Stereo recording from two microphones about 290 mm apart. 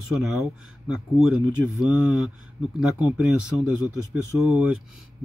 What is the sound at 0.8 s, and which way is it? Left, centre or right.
Speech, centre.